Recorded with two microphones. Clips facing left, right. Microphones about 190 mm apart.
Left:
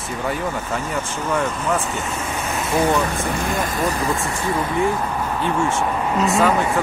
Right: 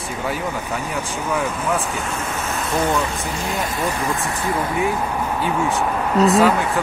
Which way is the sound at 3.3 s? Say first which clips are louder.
Left 2 dB; 50° left (ahead or behind).